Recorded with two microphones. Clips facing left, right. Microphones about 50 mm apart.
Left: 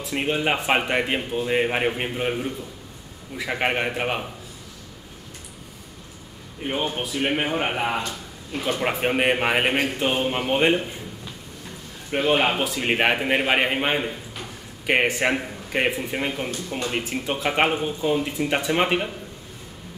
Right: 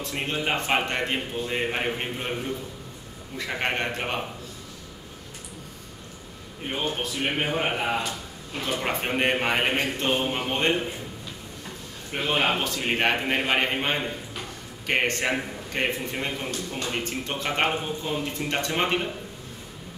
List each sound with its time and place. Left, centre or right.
0.1 s a man's voice: centre
3.3 s a man's voice: centre
6.6 s a man's voice: centre
12.2 s a man's voice: centre